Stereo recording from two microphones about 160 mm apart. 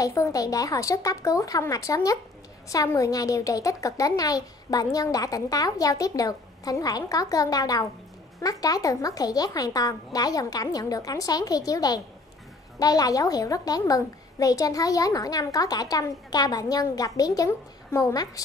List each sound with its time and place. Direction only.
0.0 s a woman's voice: 20° left (ahead or behind)